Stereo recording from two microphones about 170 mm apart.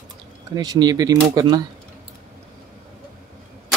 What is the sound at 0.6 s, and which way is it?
Speech, 25° right (ahead or behind).